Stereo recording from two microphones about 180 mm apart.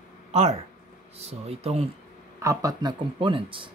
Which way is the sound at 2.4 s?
20° right (ahead or behind).